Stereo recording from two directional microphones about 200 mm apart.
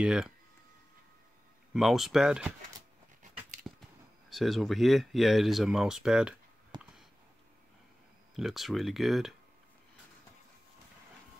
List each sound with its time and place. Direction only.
0.0 s speech: 5° right (ahead or behind)
1.7 s speech: centre (ahead or behind)
4.3 s speech: centre (ahead or behind)
6.7 s a sound: 20° right (ahead or behind)
8.4 s speech: centre (ahead or behind)